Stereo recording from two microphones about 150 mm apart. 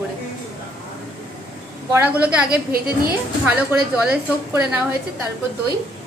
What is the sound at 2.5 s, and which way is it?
Speech, 90° right.